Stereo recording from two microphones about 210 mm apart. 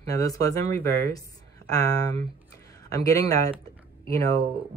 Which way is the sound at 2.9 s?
15° left (ahead or behind).